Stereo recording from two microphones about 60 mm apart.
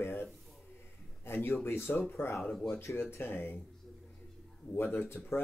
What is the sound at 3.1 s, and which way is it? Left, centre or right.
Speech, left.